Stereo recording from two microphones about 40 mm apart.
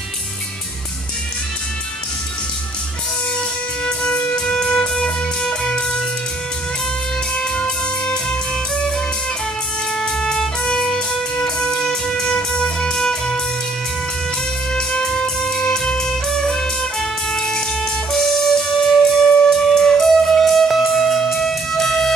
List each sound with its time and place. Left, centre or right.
3.8 s music: left
7.3 s music: left
9.9 s music: centre
14.7 s music: left